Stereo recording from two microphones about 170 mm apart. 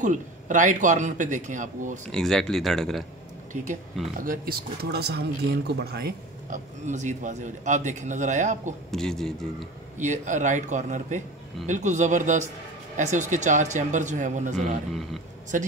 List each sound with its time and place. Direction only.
0.0 s a man's voice: 45° right (ahead or behind)
2.0 s speech: 5° left (ahead or behind)
4.2 s speech: 55° right (ahead or behind)
6.5 s a man's voice: 45° right (ahead or behind)
8.9 s speech: centre (ahead or behind)
9.9 s a man's voice: 45° right (ahead or behind)
14.9 s speech: centre (ahead or behind)
15.5 s a man's voice: 50° right (ahead or behind)